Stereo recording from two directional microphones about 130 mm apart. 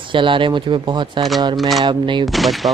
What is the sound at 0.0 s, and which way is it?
Speech, 40° right (ahead or behind).